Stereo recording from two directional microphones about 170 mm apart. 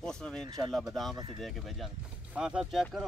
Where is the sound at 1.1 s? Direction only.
25° right (ahead or behind).